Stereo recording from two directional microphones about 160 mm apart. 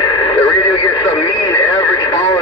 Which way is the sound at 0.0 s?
30° left (ahead or behind).